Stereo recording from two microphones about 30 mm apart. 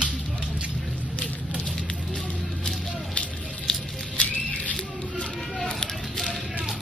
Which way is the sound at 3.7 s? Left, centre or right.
Left.